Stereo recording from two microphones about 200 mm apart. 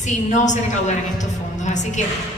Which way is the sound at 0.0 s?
35° left (ahead or behind).